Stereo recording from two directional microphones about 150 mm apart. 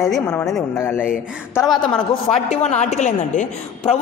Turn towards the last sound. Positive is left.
turn(degrees=50)  # may be behind; listen again after turning